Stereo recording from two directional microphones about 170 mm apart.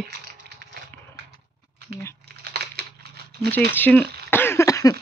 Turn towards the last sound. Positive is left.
turn(degrees=20)  # may be behind; listen again after turning